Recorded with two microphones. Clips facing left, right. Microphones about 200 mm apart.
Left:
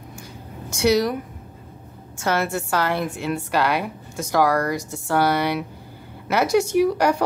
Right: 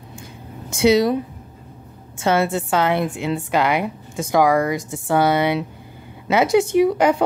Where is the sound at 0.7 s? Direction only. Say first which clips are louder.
Right 4 dB; 20° right (ahead or behind).